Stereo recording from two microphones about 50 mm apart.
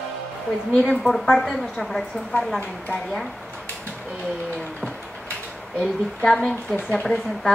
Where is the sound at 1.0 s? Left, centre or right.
Centre.